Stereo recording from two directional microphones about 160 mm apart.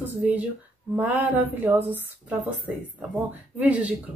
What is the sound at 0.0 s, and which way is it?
Speech, 10° right (ahead or behind).